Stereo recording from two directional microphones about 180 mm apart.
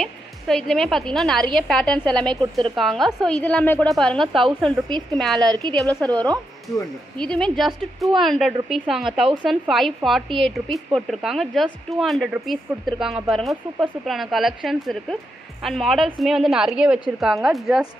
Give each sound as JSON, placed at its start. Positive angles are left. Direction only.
{"t": 0.0, "sound": "a woman's voice", "side_deg": 5}
{"t": 4.8, "sound": "a woman's voice", "side_deg": -25}
{"t": 5.2, "sound": "speech", "side_deg": 0}
{"t": 5.5, "sound": "a woman's voice", "side_deg": -25}
{"t": 5.8, "sound": "a woman's voice", "side_deg": 5}
{"t": 7.2, "sound": "speech", "side_deg": 5}